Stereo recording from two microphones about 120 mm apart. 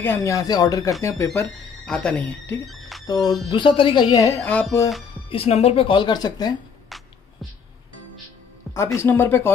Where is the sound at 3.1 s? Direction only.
30° left (ahead or behind).